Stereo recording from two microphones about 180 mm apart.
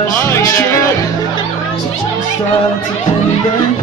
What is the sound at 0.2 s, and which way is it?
Music, 15° left (ahead or behind).